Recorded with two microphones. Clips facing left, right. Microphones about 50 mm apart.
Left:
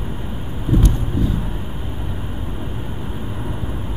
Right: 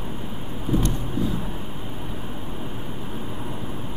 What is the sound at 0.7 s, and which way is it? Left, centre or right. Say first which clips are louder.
Vehicle: left 4 dB; centre.